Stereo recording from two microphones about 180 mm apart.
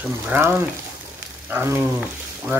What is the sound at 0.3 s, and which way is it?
Speech, 10° right (ahead or behind).